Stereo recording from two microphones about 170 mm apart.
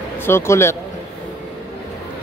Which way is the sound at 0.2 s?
15° left (ahead or behind).